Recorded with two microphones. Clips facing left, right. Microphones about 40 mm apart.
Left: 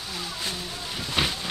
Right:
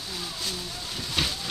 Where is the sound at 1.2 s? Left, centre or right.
Centre.